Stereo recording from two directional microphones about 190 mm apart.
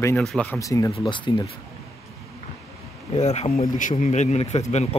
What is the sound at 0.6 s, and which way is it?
Speech, 15° left (ahead or behind).